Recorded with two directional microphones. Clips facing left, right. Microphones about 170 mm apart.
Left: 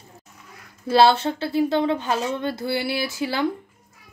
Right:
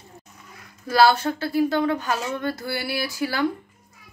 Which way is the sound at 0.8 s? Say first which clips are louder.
Left 1 dB; 25° left (ahead or behind).